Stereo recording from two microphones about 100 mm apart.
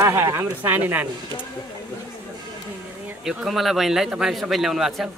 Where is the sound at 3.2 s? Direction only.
5° right (ahead or behind).